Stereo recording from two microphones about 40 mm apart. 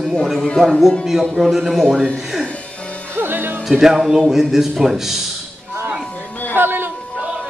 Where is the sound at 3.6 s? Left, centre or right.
Centre.